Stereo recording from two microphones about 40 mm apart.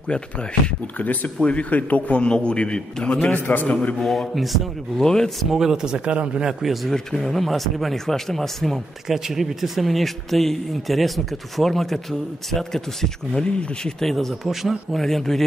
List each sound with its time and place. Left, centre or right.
0.1 s a man's voice: left
0.9 s a man's voice: left
1.4 s a man's voice: left
3.3 s a man's voice: left
4.9 s speech: centre
5.4 s speech: centre
6.6 s speech: centre
6.9 s speech: centre
9.0 s speech: centre
13.3 s a man's voice: centre
14.0 s speech: centre
15.0 s speech: centre